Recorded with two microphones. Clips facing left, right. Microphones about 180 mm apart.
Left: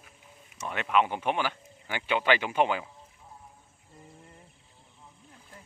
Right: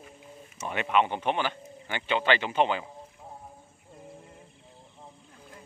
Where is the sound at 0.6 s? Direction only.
Centre (ahead or behind).